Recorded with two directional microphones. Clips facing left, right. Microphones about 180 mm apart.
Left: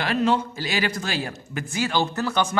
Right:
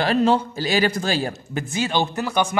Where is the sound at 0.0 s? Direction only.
35° right (ahead or behind).